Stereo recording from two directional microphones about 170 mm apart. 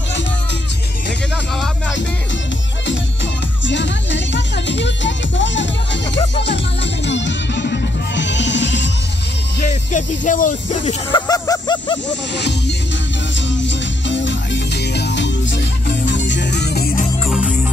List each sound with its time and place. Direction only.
3.6 s music: 90° left
7.1 s music: 90° left
9.6 s speech: 45° left (ahead or behind)
11.1 s a sound: 25° left (ahead or behind)
12.1 s music: 90° left; by 17.0 s 65° left (ahead or behind)
17.3 s music: 5° right (ahead or behind)